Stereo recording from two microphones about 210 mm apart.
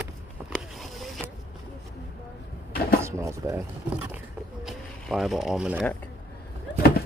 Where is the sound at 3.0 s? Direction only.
15° right (ahead or behind).